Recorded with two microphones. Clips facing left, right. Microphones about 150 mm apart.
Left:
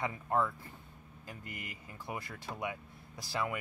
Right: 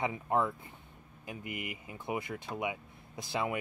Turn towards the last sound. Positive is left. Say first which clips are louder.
# right 2 dB
turn(degrees=-20)  # may be behind; listen again after turning